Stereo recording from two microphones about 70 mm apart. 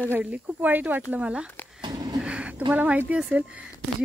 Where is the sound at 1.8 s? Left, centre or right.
Right.